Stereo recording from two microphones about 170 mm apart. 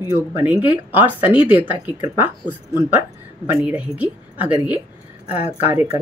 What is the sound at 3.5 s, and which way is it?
A woman's voice, 10° right (ahead or behind).